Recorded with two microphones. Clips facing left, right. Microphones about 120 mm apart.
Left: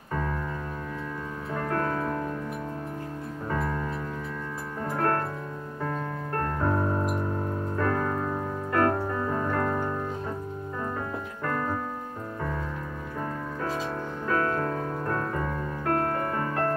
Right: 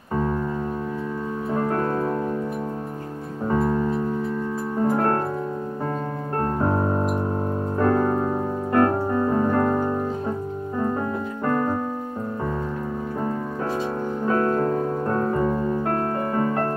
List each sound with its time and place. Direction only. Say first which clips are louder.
1.5 s music: right 5 dB; 30° right (ahead or behind)
3.4 s music: right 9 dB; 25° right (ahead or behind)
4.9 s music: right 2 dB; 25° right (ahead or behind)
7.7 s piano: right 8 dB; 25° right (ahead or behind)
11.4 s music: right 7 dB; 25° right (ahead or behind)
14.2 s music: right 6 dB; 25° right (ahead or behind)